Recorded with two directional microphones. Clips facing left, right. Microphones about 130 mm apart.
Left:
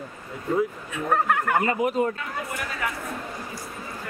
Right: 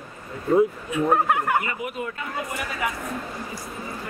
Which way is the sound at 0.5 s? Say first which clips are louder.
Right 6 dB; 15° right (ahead or behind).